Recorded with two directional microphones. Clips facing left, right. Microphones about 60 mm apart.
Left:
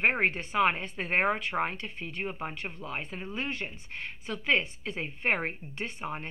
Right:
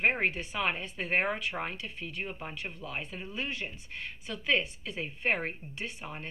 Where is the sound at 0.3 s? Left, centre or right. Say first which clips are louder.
Left 6 dB; left.